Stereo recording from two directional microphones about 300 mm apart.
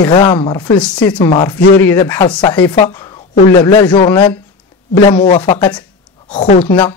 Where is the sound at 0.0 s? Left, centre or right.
Centre.